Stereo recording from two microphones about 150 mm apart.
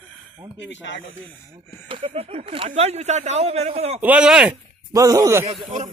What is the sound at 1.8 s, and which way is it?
A man's voice, 40° right (ahead or behind).